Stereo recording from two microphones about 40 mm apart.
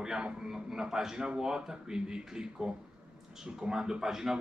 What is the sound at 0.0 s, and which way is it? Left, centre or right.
Speech, centre.